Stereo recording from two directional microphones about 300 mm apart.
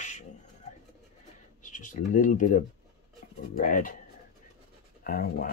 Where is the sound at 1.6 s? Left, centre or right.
Left.